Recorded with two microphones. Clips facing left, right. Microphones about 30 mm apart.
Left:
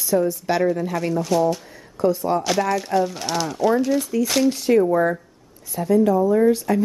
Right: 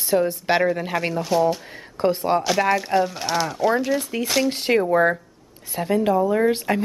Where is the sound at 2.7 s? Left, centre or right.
Centre.